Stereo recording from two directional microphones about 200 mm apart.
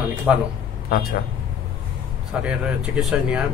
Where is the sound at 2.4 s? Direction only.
5° right (ahead or behind).